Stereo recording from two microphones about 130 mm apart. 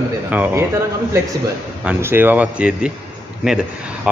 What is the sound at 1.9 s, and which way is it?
A man's voice, 15° right (ahead or behind).